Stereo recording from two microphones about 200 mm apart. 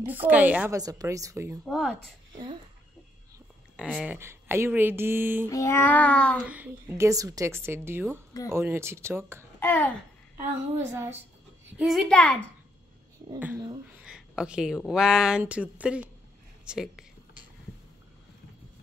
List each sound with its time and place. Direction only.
0.0 s a woman's voice: 10° right (ahead or behind)
0.7 s a woman's voice: 20° right (ahead or behind)
1.7 s a child's voice: centre (ahead or behind)
3.7 s speech: centre (ahead or behind)
4.1 s a woman's voice: 10° right (ahead or behind)
5.5 s child singing: 15° left (ahead or behind)
6.4 s a woman's voice: 10° right (ahead or behind)
9.6 s a sound: 10° left (ahead or behind)
10.9 s a woman's voice: 10° right (ahead or behind)
11.7 s a child's voice: centre (ahead or behind)
13.9 s a child's voice: 5° right (ahead or behind)